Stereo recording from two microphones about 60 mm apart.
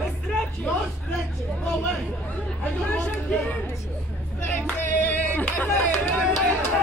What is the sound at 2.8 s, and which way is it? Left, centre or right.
Speech, left.